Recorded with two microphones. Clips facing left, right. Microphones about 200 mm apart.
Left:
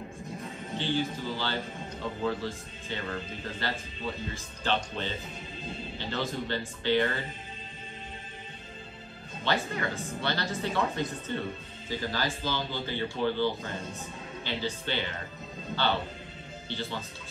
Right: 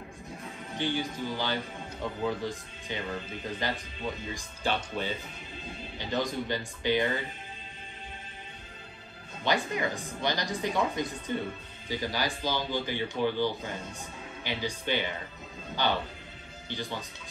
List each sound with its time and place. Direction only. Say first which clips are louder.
0.7 s speech: left 1 dB; 15° right (ahead or behind)
9.4 s speech: right 1 dB; 15° right (ahead or behind)
16.6 s speech: even; 15° right (ahead or behind)